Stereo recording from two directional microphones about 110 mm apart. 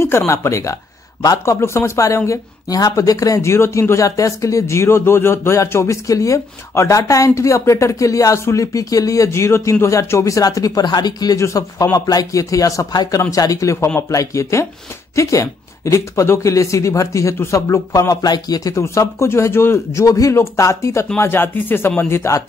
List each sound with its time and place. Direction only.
0.3 s speech: 25° left (ahead or behind)